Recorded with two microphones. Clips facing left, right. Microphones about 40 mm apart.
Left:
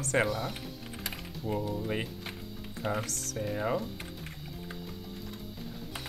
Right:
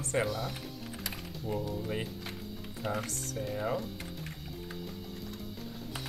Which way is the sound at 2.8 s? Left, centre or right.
Centre.